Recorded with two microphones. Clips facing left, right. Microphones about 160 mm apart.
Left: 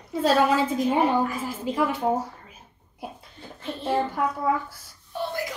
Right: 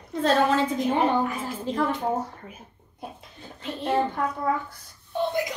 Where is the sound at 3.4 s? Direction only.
20° right (ahead or behind).